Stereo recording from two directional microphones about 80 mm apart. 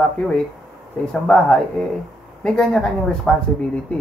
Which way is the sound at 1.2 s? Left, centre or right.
Centre.